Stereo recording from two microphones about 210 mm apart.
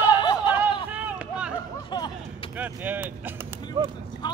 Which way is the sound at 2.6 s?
10° right (ahead or behind).